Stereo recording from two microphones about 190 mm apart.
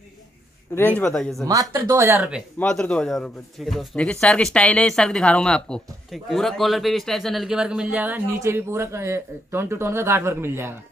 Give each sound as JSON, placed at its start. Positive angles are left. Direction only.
{"t": 0.7, "sound": "speech", "side_deg": 10}
{"t": 1.4, "sound": "speech", "side_deg": -20}
{"t": 2.6, "sound": "a man's voice", "side_deg": 5}